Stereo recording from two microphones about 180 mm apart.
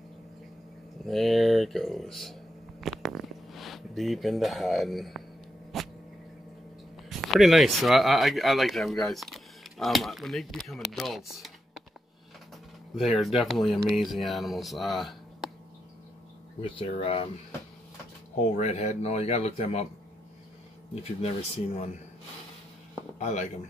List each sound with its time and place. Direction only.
1.0 s speech: centre (ahead or behind)
2.8 s a sound: centre (ahead or behind)
7.1 s speech: centre (ahead or behind)
12.9 s speech: centre (ahead or behind)
16.6 s speech: 30° left (ahead or behind)
18.6 s speech: 40° left (ahead or behind)
20.9 s speech: 35° left (ahead or behind)
23.1 s speech: 40° left (ahead or behind)